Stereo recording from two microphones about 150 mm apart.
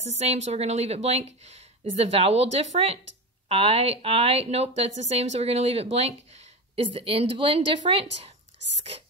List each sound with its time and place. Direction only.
0.0 s a woman's voice: 45° right (ahead or behind)